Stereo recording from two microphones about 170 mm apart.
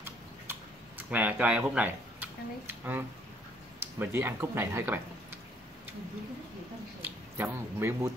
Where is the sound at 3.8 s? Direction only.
15° right (ahead or behind).